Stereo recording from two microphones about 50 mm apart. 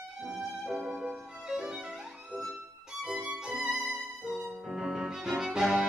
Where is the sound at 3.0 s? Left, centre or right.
Centre.